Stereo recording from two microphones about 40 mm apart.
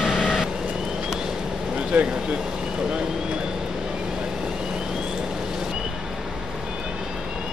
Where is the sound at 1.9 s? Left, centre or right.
Right.